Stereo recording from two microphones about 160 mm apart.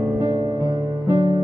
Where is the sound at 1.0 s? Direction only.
20° right (ahead or behind).